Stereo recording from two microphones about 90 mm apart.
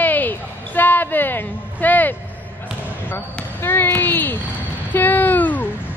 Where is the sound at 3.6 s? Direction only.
25° left (ahead or behind).